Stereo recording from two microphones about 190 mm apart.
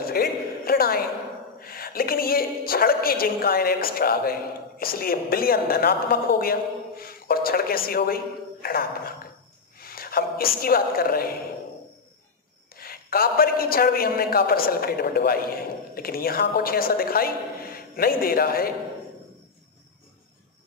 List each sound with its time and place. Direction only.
0.0 s a sound: 50° left (ahead or behind)
1.6 s a woman's voice: 50° left (ahead or behind)
12.7 s a woman's voice: 50° left (ahead or behind)